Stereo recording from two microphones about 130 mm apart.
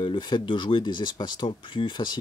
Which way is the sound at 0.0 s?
40° left (ahead or behind).